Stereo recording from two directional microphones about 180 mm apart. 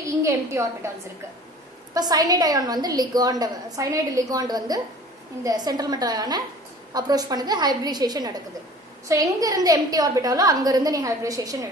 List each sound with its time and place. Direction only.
0.2 s a woman's voice: 15° right (ahead or behind)
2.0 s a woman's voice: 20° right (ahead or behind)